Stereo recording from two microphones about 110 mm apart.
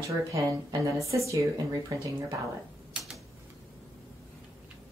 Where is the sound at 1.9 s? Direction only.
35° right (ahead or behind).